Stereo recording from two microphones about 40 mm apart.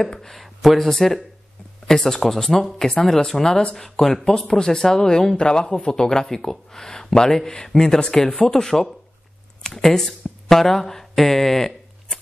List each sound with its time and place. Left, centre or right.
0.0 s speech: centre
0.4 s a sound: centre
0.7 s speech: centre; by 5.9 s left
5.9 s speech: centre